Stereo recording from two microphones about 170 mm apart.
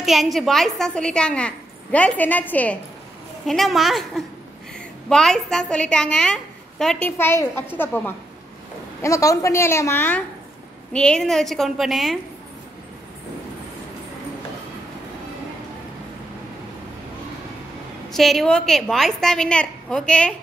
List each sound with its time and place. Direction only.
0.0 s a woman's voice: centre (ahead or behind)
18.1 s a woman's voice: centre (ahead or behind)